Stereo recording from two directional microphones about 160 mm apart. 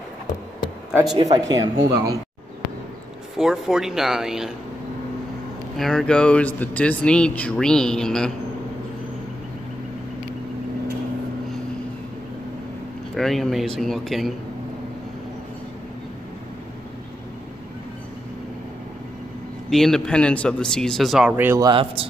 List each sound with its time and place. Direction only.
1.1 s speech: 25° right (ahead or behind)
3.3 s speech: 5° right (ahead or behind)
5.8 s speech: 5° left (ahead or behind)
13.1 s speech: centre (ahead or behind)
19.7 s speech: centre (ahead or behind)
21.6 s speech: 30° right (ahead or behind)